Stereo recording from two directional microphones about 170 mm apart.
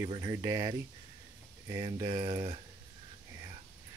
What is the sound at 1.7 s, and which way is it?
Speech, 25° right (ahead or behind).